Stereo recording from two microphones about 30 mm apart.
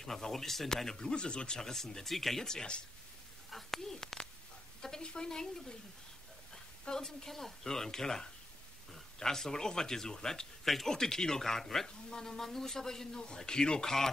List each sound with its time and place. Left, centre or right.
0.0 s speech: centre; by 1.6 s left
1.6 s speech: centre
3.7 s speech: centre
5.0 s a woman's voice: left
6.8 s speech: left